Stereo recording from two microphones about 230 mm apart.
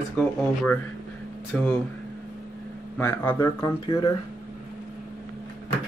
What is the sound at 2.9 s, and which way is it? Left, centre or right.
Speech, centre.